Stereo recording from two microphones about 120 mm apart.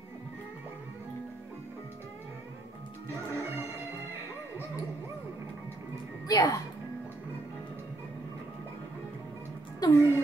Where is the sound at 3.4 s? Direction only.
20° right (ahead or behind).